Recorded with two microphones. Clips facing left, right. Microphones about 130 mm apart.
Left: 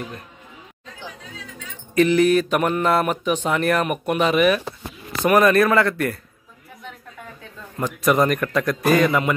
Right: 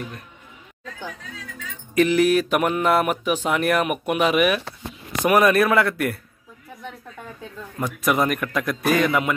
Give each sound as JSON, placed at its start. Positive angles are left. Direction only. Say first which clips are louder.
{"t": 2.0, "sound": "speech", "louder": "left 1 dB", "side_deg": -5}
{"t": 7.8, "sound": "a man's voice", "louder": "left 3 dB", "side_deg": -5}